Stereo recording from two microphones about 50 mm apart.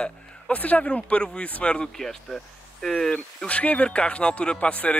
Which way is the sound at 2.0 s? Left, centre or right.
Centre.